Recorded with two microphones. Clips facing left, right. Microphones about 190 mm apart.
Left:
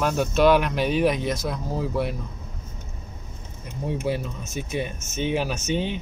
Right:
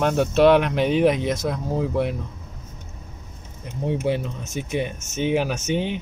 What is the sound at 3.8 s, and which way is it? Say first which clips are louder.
Speech: right 3 dB; 20° right (ahead or behind).